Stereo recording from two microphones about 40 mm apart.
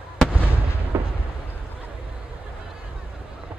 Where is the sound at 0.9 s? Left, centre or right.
Right.